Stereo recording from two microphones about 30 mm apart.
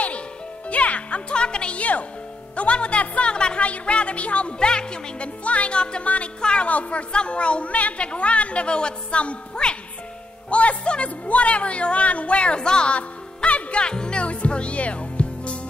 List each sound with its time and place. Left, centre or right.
0.7 s music: left
1.3 s music: left
1.8 s music: left
2.5 s a woman's voice: left
3.6 s speech: left
4.6 s music: left
5.4 s a woman's voice: left
6.0 s speech: left
6.4 s a woman's voice: left
6.7 s speech: left
7.1 s a woman's voice: left
12.9 s music: left
13.8 s speech: left
14.2 s music: left